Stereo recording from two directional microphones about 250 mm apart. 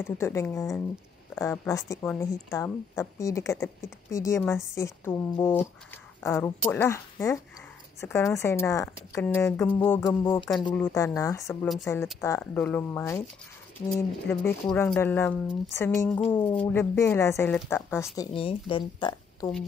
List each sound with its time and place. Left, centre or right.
0.0 s speech: centre